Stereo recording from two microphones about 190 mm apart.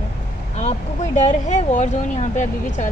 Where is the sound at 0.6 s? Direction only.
35° left (ahead or behind).